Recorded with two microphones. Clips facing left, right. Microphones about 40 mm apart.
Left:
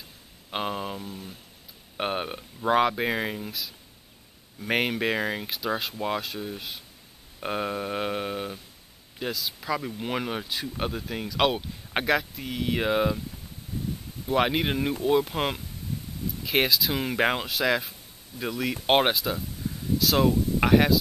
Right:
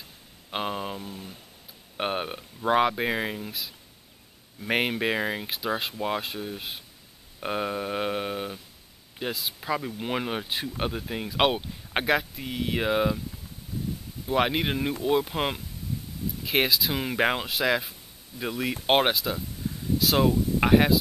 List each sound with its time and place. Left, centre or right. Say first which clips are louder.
0.5 s speech: even; centre
4.6 s speech: even; centre
9.3 s speech: left 1 dB; right
9.6 s speech: even; centre
10.5 s speech: right 1 dB; right
10.9 s speech: even; centre
14.2 s speech: left 1 dB; centre